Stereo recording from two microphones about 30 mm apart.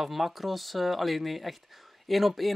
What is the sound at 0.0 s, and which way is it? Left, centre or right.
Speech, centre.